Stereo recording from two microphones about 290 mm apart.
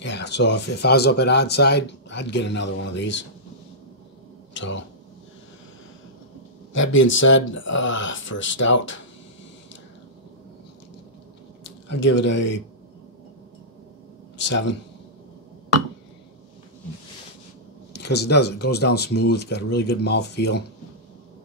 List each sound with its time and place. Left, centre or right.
0.0 s speech: left
4.6 s speech: left
6.7 s speech: left
12.0 s speech: left
14.4 s speech: left
17.9 s speech: left